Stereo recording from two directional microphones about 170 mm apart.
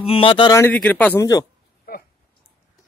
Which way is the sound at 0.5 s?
10° left (ahead or behind).